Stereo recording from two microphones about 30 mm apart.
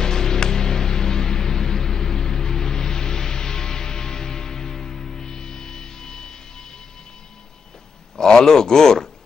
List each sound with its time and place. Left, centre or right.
0.0 s music: centre
8.2 s speech: left